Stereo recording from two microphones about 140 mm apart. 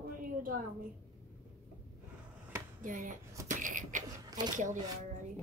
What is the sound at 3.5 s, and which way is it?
Beatboxing, 65° right (ahead or behind).